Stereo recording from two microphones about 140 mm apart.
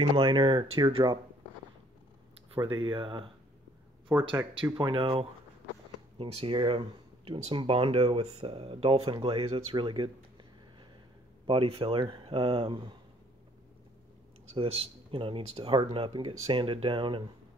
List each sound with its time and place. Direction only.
0.1 s speech: 35° right (ahead or behind)
2.5 s speech: 35° right (ahead or behind)
4.1 s speech: 20° right (ahead or behind)
4.7 s speech: 40° right (ahead or behind)
14.5 s speech: 40° right (ahead or behind)